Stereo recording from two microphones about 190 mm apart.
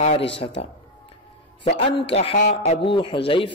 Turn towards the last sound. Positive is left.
turn(degrees=25)  # may be behind; listen again after turning